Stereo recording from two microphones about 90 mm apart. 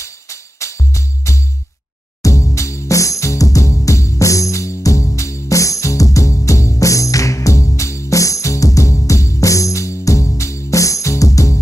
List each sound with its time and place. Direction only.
0.0 s music: 35° left (ahead or behind)